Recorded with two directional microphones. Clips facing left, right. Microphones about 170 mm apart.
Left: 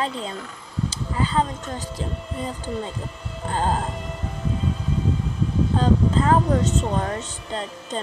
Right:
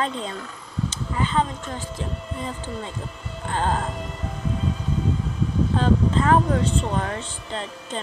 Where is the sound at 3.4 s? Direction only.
35° left (ahead or behind).